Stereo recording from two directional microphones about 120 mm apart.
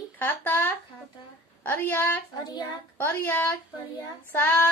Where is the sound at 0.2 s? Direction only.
15° left (ahead or behind).